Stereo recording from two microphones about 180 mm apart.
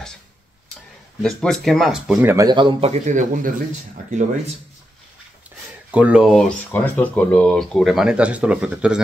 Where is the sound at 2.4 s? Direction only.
25° right (ahead or behind); by 3.5 s 45° right (ahead or behind).